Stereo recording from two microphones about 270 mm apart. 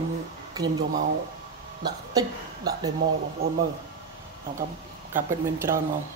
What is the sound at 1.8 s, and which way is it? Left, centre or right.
Speech, centre.